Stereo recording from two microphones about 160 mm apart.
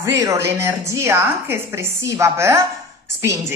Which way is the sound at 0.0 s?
20° right (ahead or behind).